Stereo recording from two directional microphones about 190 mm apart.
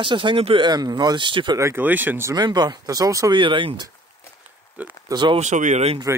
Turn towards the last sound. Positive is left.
turn(degrees=-35)  # may be behind; listen again after turning